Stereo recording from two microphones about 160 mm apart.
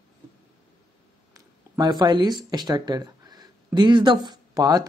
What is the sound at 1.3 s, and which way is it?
Speech, 25° right (ahead or behind).